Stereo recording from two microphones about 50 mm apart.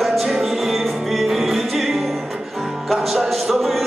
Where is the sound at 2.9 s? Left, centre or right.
Centre.